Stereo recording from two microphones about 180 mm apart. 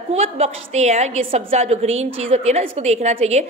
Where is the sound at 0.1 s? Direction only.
35° right (ahead or behind).